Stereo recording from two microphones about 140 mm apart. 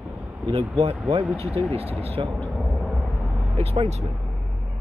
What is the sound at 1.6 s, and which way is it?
Speech, 35° right (ahead or behind).